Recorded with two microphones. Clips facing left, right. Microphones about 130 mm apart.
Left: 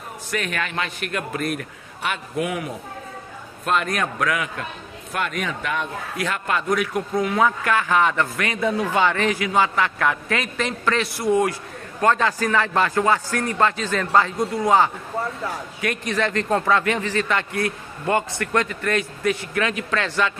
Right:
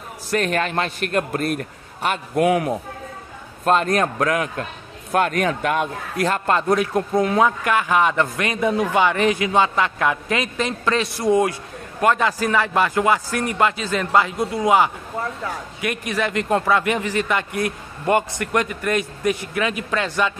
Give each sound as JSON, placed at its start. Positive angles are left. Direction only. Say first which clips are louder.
{"t": 0.3, "sound": "a man's voice", "louder": "right 6 dB", "side_deg": -35}
{"t": 2.3, "sound": "a man's voice", "louder": "right 9 dB", "side_deg": -70}
{"t": 3.6, "sound": "a man's voice", "louder": "right 5 dB", "side_deg": -35}
{"t": 6.2, "sound": "a man's voice", "louder": "right 5 dB", "side_deg": -35}
{"t": 7.3, "sound": "a man's voice", "louder": "right 2 dB", "side_deg": -15}